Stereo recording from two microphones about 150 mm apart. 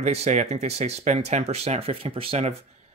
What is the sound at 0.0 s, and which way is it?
Speech, 45° right (ahead or behind).